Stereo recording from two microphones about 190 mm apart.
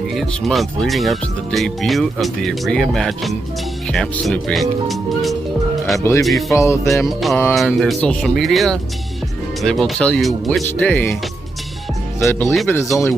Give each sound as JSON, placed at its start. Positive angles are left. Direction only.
{"t": 0.1, "sound": "speech", "side_deg": 0}
{"t": 5.9, "sound": "music", "side_deg": 15}
{"t": 7.1, "sound": "speech", "side_deg": 0}
{"t": 12.3, "sound": "music", "side_deg": 10}
{"t": 12.8, "sound": "speech", "side_deg": 0}